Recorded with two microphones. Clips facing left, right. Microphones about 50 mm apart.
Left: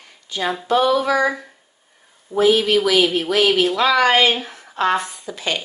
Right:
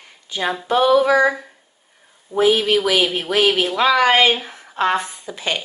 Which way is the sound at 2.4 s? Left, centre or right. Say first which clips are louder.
Left 1 dB; centre.